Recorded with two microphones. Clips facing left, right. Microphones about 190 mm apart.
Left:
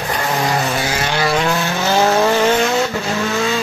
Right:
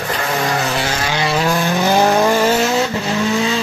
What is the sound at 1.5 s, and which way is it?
Vehicle, 15° right (ahead or behind).